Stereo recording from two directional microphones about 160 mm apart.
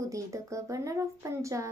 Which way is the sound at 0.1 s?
20° right (ahead or behind).